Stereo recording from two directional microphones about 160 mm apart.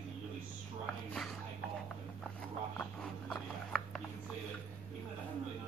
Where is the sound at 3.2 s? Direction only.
5° left (ahead or behind).